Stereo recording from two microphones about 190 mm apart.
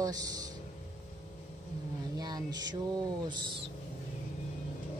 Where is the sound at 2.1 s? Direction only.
20° right (ahead or behind).